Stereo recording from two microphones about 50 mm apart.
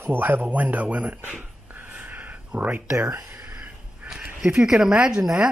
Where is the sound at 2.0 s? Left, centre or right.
Right.